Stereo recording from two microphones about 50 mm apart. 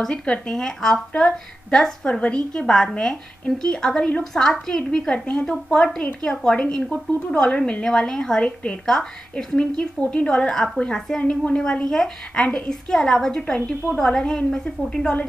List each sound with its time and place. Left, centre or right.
0.2 s speech: centre
4.2 s speech: centre
9.6 s speech: centre